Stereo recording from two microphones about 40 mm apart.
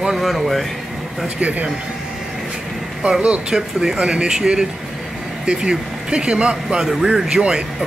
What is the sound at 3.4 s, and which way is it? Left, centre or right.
Speech, centre.